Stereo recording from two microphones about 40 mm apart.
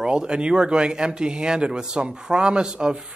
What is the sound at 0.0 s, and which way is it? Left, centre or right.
Speech, centre.